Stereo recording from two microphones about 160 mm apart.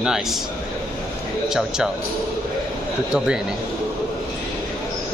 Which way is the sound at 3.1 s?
5° right (ahead or behind).